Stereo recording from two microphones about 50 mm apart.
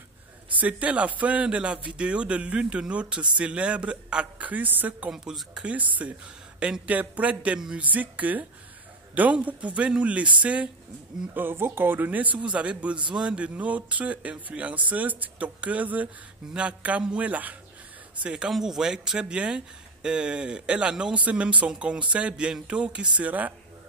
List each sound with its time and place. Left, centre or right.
0.6 s a man's voice: right
4.5 s a man's voice: right
5.1 s speech: centre
5.8 s a man's voice: right
7.5 s speech: centre
7.8 s a man's voice: right
11.3 s a man's voice: right; by 13.4 s centre
13.4 s a man's voice: right
18.1 s speech: right
18.5 s a man's voice: centre
23.2 s a man's voice: right